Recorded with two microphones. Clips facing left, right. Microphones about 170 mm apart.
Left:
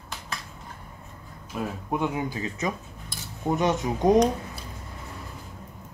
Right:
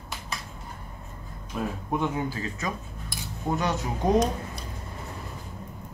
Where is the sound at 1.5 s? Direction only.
10° left (ahead or behind).